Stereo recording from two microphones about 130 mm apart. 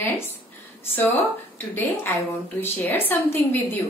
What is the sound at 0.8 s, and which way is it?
Speech, 15° left (ahead or behind).